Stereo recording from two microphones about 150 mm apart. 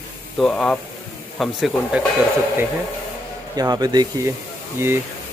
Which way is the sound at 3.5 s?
25° right (ahead or behind).